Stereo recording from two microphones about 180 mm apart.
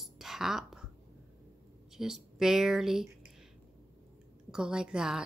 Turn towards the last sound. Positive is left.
turn(degrees=-5)  # may be behind; listen again after turning